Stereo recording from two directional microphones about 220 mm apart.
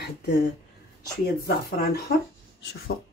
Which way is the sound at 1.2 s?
45° left (ahead or behind).